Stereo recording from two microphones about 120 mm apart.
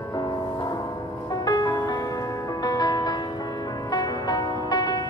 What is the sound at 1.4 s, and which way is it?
Music, 35° left (ahead or behind).